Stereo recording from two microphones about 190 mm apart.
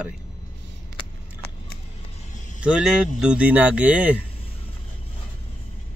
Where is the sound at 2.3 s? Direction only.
40° left (ahead or behind).